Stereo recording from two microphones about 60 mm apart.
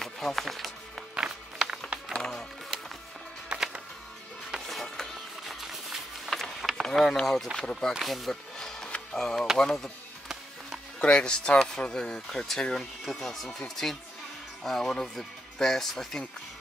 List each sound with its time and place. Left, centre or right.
0.0 s speech: centre
1.1 s music: centre
2.1 s music: centre
3.4 s music: centre
6.4 s chop: centre
7.5 s speech: centre
8.5 s music: centre
9.6 s speech: centre
11.0 s speech: centre